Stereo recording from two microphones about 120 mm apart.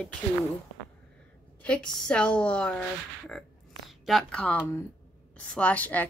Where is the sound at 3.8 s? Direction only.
Centre (ahead or behind).